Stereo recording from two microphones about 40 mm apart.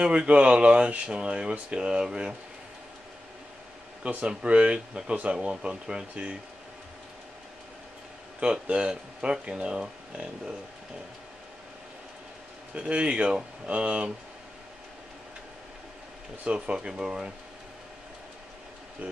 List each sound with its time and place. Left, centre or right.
0.0 s speech: right
4.0 s speech: right
8.4 s speech: right
12.7 s speech: right
16.4 s speech: right